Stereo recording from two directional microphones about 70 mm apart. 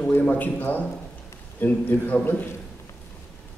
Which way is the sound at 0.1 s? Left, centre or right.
Left.